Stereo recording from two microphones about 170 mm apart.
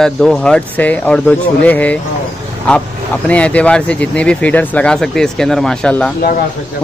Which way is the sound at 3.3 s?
10° left (ahead or behind).